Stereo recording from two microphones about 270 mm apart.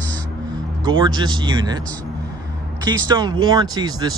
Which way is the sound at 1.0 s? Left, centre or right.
Centre.